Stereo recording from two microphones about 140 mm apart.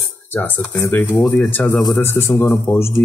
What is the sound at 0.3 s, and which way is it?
Speech, 15° left (ahead or behind).